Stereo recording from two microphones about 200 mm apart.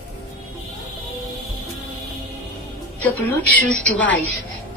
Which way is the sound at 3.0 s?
5° left (ahead or behind).